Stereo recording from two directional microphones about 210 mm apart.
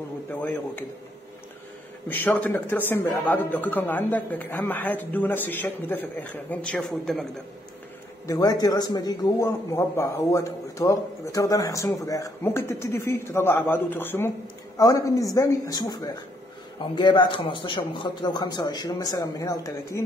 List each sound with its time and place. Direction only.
0.3 s a man's voice: 5° left (ahead or behind)
2.0 s a man's voice: 10° left (ahead or behind)
8.3 s a man's voice: 20° left (ahead or behind)